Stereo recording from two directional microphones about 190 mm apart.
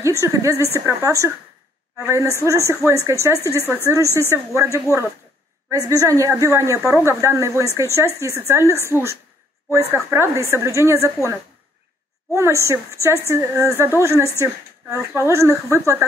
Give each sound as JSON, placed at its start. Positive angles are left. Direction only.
{"t": 0.0, "sound": "a woman's voice", "side_deg": -15}
{"t": 3.3, "sound": "speech", "side_deg": 10}
{"t": 3.8, "sound": "a woman's voice", "side_deg": -15}
{"t": 12.4, "sound": "a woman's voice", "side_deg": -15}